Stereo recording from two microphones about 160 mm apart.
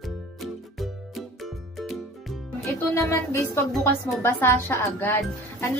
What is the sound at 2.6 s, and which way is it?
A child's voice, 20° left (ahead or behind).